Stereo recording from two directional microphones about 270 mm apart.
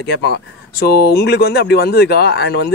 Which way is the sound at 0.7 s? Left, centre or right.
Left.